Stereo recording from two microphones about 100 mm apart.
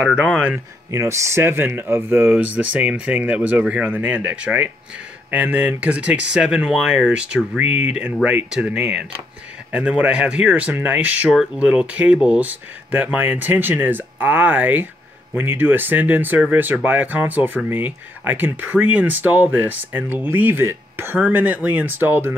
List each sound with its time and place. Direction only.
0.0 s speech: 5° right (ahead or behind)
0.9 s speech: 30° right (ahead or behind)